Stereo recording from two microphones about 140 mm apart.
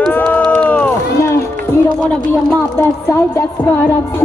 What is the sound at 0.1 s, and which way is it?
Run, 10° left (ahead or behind).